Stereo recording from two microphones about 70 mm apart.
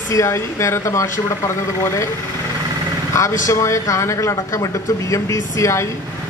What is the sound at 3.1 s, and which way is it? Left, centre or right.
A man's voice, left.